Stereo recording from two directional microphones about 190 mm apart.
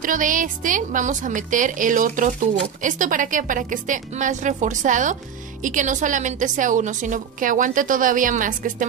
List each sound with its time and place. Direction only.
0.0 s a woman's voice: 45° right (ahead or behind)